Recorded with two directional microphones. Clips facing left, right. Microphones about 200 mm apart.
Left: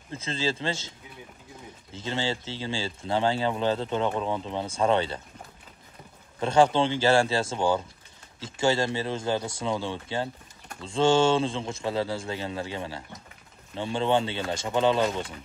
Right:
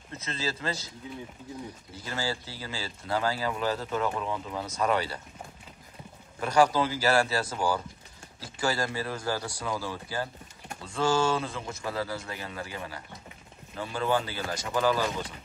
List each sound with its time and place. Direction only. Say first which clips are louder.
0.1 s speech: left 5 dB; 30° left (ahead or behind)
2.0 s speech: left 4 dB; 25° left (ahead or behind)
6.4 s speech: left 2 dB; 25° left (ahead or behind)